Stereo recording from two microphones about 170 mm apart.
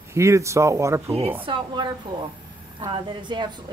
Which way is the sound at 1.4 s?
30° right (ahead or behind).